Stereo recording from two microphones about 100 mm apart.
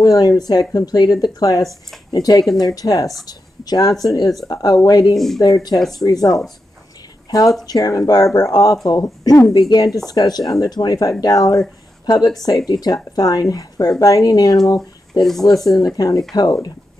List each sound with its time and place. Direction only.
0.0 s speech: 35° left (ahead or behind)
5.1 s speech: 5° left (ahead or behind)
5.4 s speech: 40° left (ahead or behind)
5.8 s speech: centre (ahead or behind)
6.0 s speech: 40° left (ahead or behind)
14.8 s speech: 5° left (ahead or behind)
15.4 s speech: 40° left (ahead or behind)